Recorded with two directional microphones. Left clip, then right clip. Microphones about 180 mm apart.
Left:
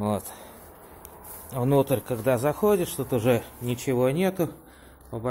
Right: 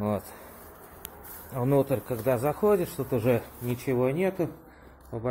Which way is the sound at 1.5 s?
25° left (ahead or behind).